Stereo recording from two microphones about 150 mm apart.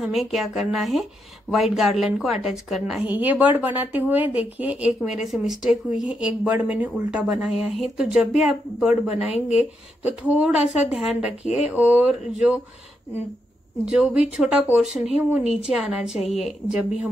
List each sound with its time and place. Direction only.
0.0 s speech: centre (ahead or behind)
3.1 s a woman's voice: 10° right (ahead or behind)
11.4 s speech: 45° left (ahead or behind)
11.7 s a woman's voice: 10° right (ahead or behind)
13.8 s speech: 5° right (ahead or behind)